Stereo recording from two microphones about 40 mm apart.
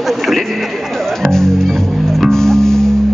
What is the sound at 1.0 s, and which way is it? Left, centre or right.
Music, centre.